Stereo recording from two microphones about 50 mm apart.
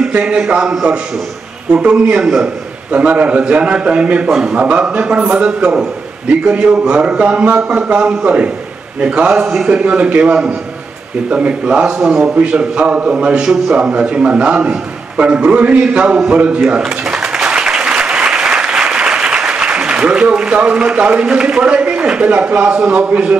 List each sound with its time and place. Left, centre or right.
0.1 s a sound: right
1.7 s a man's voice: right
16.9 s applause: centre
23.0 s a man's voice: right